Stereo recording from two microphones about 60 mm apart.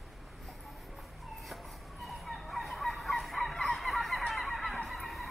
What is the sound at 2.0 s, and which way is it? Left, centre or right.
Fowl, centre.